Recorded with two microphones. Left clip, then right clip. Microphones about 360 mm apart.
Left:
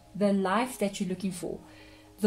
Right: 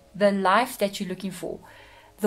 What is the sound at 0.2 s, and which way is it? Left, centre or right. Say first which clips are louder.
A woman's voice: right 7 dB; right.